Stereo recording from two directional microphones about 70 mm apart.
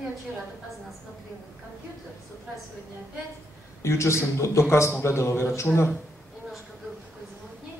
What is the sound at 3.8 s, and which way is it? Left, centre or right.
A man's voice, left.